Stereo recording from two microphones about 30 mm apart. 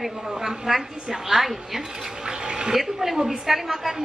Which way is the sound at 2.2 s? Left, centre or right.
Right.